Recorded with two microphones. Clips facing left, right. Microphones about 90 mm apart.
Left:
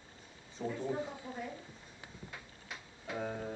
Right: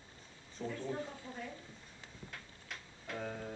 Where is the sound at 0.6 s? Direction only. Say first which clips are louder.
Left 3 dB; 10° left (ahead or behind).